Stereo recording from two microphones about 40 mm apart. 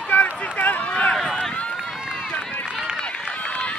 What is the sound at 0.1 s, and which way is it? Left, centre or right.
Run, left.